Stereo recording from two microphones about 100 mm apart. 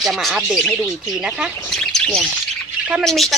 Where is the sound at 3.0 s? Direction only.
Centre (ahead or behind).